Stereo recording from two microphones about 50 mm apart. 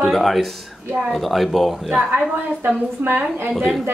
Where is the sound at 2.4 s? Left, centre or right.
Right.